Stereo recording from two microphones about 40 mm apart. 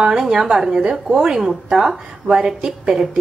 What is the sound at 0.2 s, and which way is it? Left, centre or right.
A woman's voice, centre.